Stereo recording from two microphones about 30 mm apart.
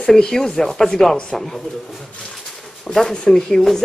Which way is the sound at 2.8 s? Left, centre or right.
Centre.